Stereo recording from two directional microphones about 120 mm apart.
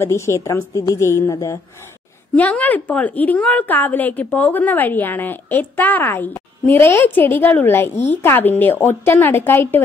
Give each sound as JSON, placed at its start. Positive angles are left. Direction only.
{"t": 0.0, "sound": "a woman's voice", "side_deg": 25}
{"t": 2.3, "sound": "a woman's voice", "side_deg": 15}